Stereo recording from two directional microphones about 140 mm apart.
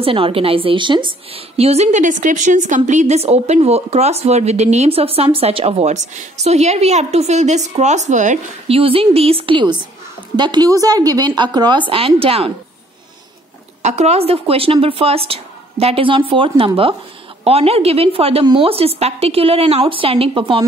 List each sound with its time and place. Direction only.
0.0 s a woman's voice: 40° right (ahead or behind); by 8.4 s 60° right (ahead or behind)
8.6 s speech: 40° right (ahead or behind)
13.8 s a woman's voice: 50° right (ahead or behind)